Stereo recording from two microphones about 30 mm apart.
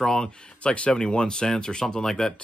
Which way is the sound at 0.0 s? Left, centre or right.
Centre.